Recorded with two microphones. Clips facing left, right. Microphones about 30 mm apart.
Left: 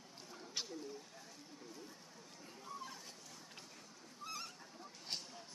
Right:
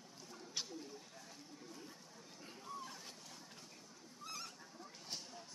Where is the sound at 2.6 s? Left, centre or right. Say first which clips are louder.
Even; centre.